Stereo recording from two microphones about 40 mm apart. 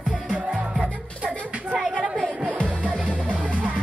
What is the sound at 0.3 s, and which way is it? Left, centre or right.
Music, right.